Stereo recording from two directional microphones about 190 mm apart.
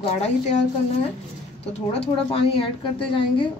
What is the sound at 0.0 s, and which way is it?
Speech, 35° left (ahead or behind).